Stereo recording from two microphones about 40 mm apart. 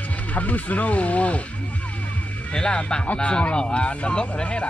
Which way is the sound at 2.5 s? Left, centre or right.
Left.